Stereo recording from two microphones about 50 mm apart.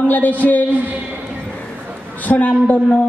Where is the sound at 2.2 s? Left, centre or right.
Left.